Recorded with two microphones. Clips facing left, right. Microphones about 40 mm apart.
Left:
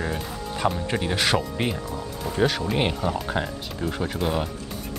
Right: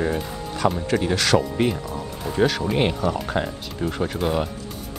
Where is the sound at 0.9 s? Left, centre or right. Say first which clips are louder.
Right 2 dB; centre.